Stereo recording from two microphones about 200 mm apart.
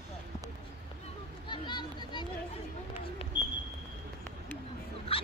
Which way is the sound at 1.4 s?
25° left (ahead or behind).